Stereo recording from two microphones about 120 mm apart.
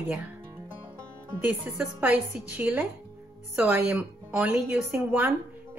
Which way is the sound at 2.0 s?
15° right (ahead or behind).